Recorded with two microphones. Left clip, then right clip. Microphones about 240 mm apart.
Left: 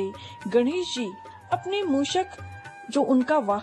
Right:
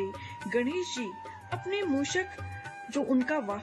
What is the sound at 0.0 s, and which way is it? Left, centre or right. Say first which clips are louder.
Music: left 4 dB; centre.